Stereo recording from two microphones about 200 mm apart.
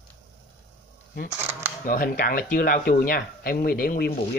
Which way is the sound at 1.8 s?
45° left (ahead or behind).